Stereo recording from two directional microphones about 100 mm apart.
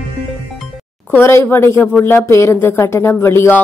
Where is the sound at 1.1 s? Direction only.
25° left (ahead or behind).